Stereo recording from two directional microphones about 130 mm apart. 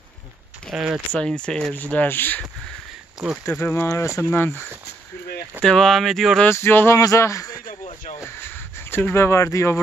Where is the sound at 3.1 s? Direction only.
5° right (ahead or behind).